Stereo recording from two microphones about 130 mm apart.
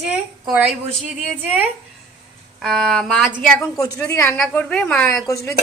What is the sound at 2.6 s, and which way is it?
A woman's voice, centre (ahead or behind).